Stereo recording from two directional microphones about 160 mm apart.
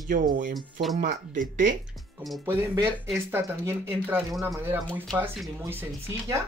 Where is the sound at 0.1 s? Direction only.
55° right (ahead or behind).